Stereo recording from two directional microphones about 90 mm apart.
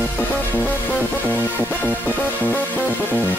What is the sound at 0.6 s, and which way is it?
Music, 20° left (ahead or behind).